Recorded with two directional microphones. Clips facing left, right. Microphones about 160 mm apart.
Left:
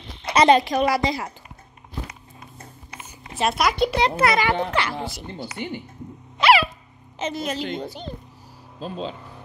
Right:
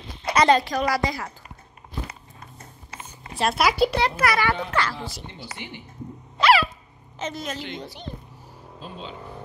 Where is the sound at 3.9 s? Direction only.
25° left (ahead or behind).